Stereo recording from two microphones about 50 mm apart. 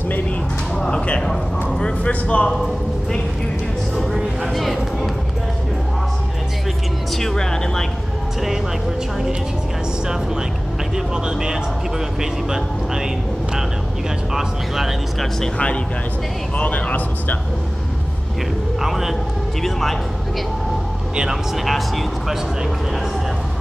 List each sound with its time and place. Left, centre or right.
0.7 s speech: centre
2.4 s a man's voice: centre
3.9 s a sound: centre
7.2 s music: centre
12.2 s speech: centre
14.3 s speech: centre
15.4 s speech: left
16.5 s speech: left
18.8 s speech: centre
21.6 s speech: centre